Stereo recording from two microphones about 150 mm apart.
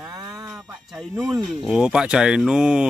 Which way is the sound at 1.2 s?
Centre (ahead or behind).